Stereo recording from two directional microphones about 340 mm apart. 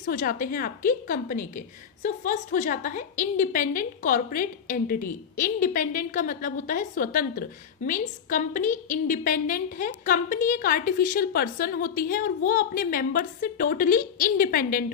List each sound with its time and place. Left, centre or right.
0.1 s a woman's voice: left